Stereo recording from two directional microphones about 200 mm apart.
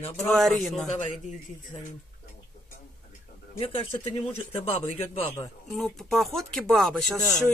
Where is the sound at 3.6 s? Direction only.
30° left (ahead or behind).